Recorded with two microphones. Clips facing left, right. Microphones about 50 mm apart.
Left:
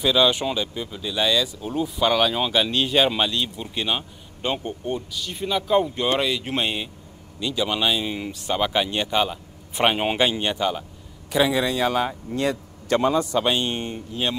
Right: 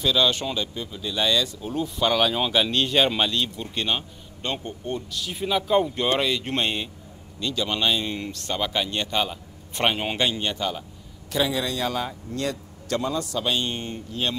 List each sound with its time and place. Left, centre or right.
0.0 s speech: centre
5.1 s a man's voice: centre